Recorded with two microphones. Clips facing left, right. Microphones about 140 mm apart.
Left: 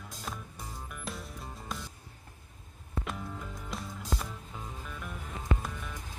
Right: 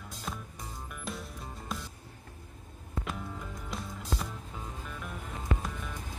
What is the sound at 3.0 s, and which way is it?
Music, centre (ahead or behind).